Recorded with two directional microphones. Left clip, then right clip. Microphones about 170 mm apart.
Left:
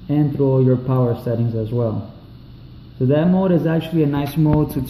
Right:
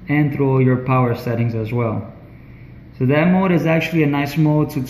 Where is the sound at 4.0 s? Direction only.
10° left (ahead or behind).